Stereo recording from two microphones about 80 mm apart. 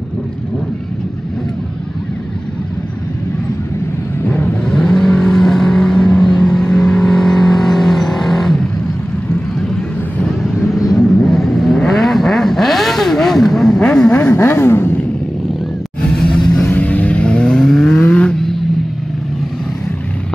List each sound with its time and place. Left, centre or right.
4.4 s vehicle: centre
14.1 s vehicle: left
16.0 s music: centre
16.6 s vehicle: left